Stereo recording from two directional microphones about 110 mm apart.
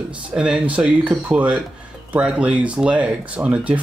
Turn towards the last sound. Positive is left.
turn(degrees=-10)  # may be behind; listen again after turning